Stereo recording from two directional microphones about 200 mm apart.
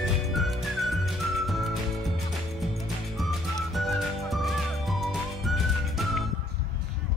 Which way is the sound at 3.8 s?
Centre (ahead or behind).